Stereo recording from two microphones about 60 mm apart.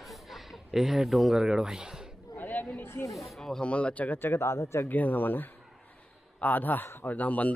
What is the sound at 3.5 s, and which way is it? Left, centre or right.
Speech, centre.